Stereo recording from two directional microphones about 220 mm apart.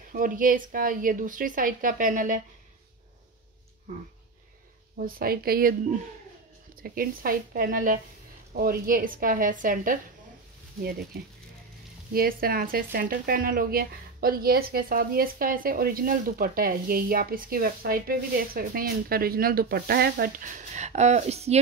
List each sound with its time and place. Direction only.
0.1 s speech: 40° right (ahead or behind)
4.9 s speech: 40° right (ahead or behind)